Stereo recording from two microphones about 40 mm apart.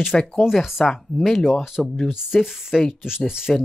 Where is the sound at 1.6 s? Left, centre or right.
Centre.